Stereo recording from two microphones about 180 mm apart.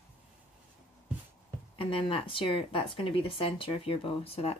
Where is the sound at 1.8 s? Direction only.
30° left (ahead or behind).